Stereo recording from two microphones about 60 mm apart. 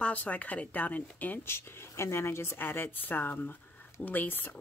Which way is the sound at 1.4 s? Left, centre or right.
Left.